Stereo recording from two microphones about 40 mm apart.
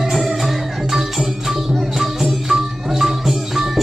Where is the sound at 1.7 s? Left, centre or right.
Centre.